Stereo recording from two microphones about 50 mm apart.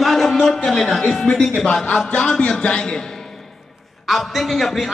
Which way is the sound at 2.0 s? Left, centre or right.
Centre.